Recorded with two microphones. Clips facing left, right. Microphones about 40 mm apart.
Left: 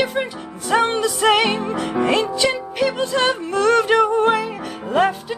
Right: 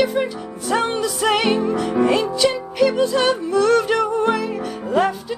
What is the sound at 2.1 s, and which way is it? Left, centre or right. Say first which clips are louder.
Music: even; left.